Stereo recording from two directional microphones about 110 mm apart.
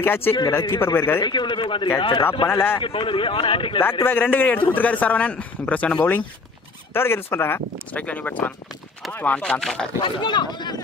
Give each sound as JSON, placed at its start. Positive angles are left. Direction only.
{"t": 0.0, "sound": "speech", "side_deg": 20}
{"t": 1.2, "sound": "speech", "side_deg": 45}
{"t": 4.0, "sound": "a man's voice", "side_deg": 20}
{"t": 10.0, "sound": "speech", "side_deg": 45}